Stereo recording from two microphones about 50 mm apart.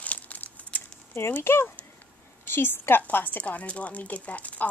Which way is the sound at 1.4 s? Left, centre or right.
Left.